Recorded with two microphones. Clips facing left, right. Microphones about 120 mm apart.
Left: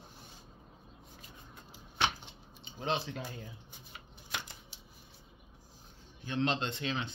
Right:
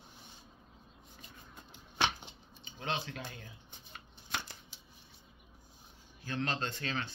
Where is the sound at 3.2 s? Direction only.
10° left (ahead or behind).